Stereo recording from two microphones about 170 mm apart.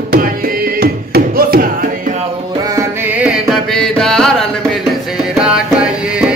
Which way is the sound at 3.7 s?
5° left (ahead or behind).